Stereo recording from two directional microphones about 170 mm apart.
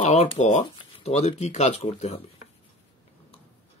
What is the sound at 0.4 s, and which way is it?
Speech, 45° left (ahead or behind).